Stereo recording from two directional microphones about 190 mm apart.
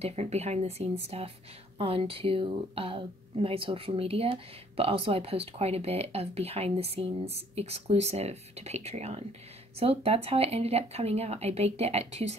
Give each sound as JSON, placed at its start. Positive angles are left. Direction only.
{"t": 0.0, "sound": "a woman's voice", "side_deg": -35}